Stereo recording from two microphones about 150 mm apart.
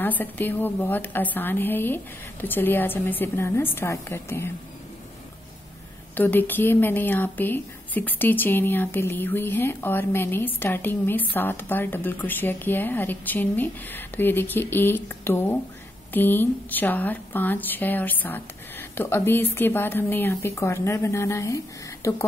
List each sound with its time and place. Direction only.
0.0 s a woman's voice: 10° left (ahead or behind)
6.1 s a woman's voice: 10° left (ahead or behind)